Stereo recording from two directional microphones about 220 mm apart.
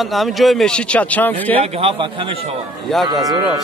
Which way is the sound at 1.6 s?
25° right (ahead or behind).